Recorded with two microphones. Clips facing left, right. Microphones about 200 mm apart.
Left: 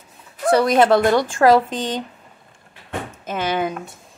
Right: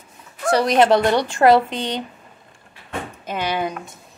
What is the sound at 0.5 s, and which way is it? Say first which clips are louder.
Speech: left 1 dB; 55° left (ahead or behind).